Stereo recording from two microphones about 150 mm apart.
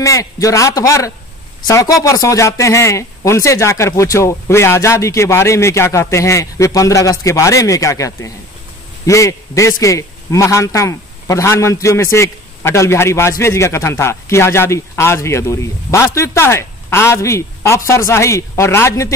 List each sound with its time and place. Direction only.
0.0 s a man's voice: 20° left (ahead or behind)